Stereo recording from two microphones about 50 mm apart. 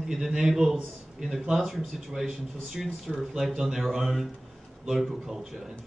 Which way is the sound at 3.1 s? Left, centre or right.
Centre.